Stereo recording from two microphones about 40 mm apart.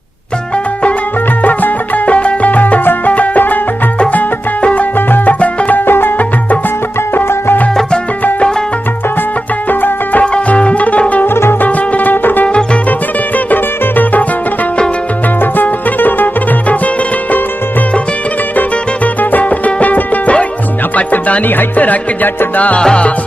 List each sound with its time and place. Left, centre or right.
1.4 s music: left
4.9 s music: left
5.4 s music: left
5.8 s music: left
9.7 s music: left
10.2 s music: left
11.2 s music: left
11.6 s music: left
13.5 s music: left
15.5 s music: left
16.6 s music: left
19.3 s music: left
22.8 s music: left